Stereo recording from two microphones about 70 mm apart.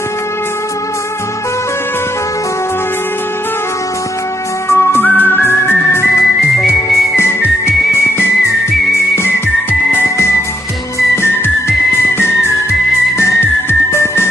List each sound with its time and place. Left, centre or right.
4.6 s music: left
5.0 s music: left
9.1 s whistle: left
10.0 s music: left